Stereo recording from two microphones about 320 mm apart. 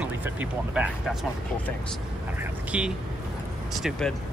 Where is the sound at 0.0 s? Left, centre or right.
Centre.